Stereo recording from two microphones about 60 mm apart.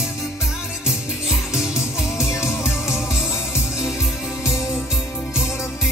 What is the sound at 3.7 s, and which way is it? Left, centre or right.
Music, centre.